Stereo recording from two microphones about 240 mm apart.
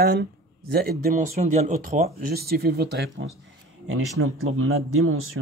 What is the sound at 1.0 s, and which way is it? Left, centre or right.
Speech, right.